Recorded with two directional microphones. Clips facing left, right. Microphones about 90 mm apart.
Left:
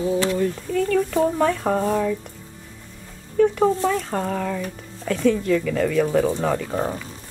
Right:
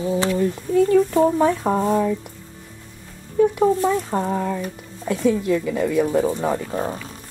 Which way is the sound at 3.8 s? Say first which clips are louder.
Right 2 dB; 20° right (ahead or behind).